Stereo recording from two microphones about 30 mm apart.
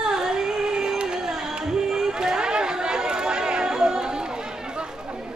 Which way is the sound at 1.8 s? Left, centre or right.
Centre.